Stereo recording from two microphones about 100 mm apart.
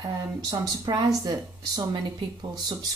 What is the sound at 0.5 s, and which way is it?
Speech, 45° right (ahead or behind).